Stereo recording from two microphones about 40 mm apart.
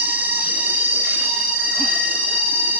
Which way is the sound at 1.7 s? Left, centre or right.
Right.